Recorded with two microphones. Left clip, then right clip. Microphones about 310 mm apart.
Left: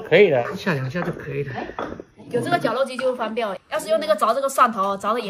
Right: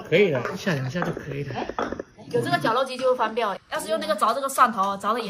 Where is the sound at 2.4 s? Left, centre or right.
Centre.